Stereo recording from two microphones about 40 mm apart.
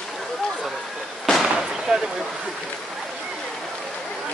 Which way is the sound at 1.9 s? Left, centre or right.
Centre.